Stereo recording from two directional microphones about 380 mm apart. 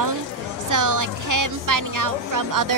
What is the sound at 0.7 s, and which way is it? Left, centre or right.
A woman's voice, right.